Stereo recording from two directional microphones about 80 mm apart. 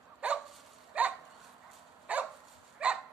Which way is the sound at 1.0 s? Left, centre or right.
Centre.